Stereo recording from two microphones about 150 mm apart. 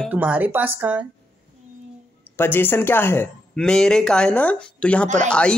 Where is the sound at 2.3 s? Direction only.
15° left (ahead or behind).